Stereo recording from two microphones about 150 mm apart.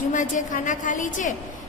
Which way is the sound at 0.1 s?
55° left (ahead or behind).